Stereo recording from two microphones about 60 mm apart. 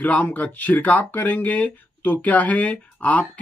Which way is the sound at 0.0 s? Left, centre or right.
Left.